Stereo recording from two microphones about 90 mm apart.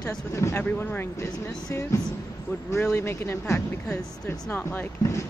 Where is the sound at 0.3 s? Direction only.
35° left (ahead or behind).